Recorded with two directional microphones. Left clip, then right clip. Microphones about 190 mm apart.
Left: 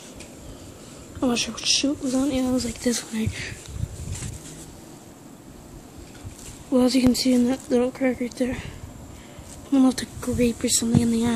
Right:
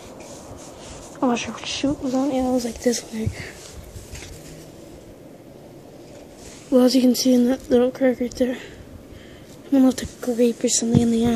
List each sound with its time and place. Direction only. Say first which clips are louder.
1.2 s speech: right 1 dB; 10° left (ahead or behind)
2.0 s speech: right 2 dB; 20° left (ahead or behind)
6.7 s speech: right 3 dB; 5° right (ahead or behind)
9.7 s speech: right 2 dB; centre (ahead or behind)